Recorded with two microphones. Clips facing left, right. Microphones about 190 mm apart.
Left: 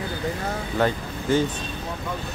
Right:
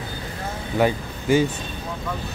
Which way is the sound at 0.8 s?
10° right (ahead or behind).